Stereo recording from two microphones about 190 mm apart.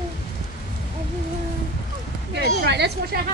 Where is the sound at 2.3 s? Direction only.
60° right (ahead or behind).